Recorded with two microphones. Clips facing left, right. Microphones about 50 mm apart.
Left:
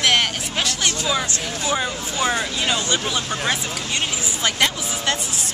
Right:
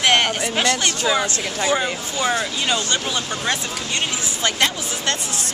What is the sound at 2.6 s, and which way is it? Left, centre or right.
Speech, centre.